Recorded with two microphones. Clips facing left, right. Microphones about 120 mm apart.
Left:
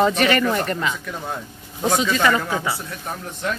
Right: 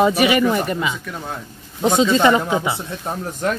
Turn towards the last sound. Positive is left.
turn(degrees=-45)  # may be behind; listen again after turning